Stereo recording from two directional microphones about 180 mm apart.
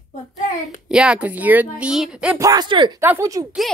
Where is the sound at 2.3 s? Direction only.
20° right (ahead or behind).